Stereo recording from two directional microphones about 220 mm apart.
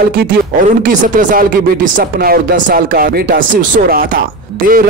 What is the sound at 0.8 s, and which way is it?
A man's voice, 35° right (ahead or behind).